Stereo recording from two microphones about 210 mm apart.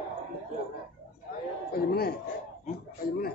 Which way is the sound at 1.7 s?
45° left (ahead or behind).